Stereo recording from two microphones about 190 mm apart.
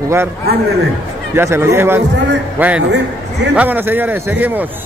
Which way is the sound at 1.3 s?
15° right (ahead or behind).